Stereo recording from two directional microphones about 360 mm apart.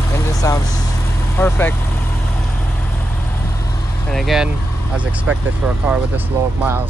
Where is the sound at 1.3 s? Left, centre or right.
Centre.